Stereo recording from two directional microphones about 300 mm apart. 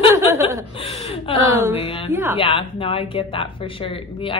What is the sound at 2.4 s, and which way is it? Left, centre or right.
Speech, centre.